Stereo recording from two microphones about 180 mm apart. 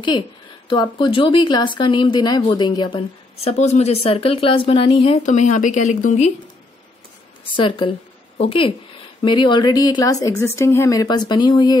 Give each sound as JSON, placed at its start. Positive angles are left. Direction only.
{"t": 0.7, "sound": "speech", "side_deg": 25}
{"t": 3.4, "sound": "speech", "side_deg": 40}
{"t": 7.5, "sound": "speech", "side_deg": 25}